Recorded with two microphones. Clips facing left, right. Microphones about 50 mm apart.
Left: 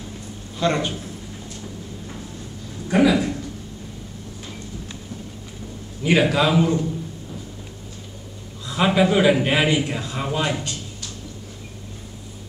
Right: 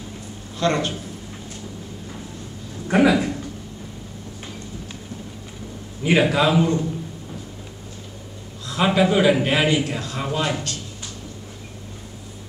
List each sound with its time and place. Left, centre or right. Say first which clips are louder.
0.6 s a man's voice: even; centre
2.9 s speech: right 1 dB; right
6.0 s a man's voice: even; centre
8.6 s a man's voice: even; centre